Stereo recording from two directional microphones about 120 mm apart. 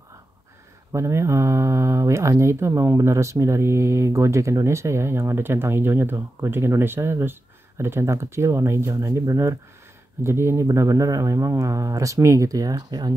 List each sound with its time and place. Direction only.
0.9 s speech: 25° right (ahead or behind)